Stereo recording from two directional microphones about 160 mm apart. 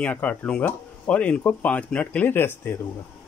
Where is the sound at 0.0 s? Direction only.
10° left (ahead or behind).